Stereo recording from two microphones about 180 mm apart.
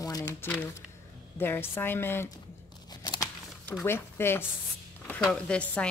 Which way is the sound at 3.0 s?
25° left (ahead or behind).